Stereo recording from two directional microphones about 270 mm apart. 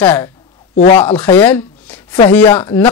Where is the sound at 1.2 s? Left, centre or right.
Centre.